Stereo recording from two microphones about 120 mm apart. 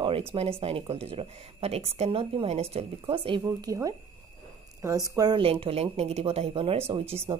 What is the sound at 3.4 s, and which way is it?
Speech, 30° right (ahead or behind).